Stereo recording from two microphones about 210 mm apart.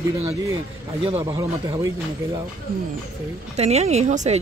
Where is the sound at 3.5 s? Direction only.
30° right (ahead or behind).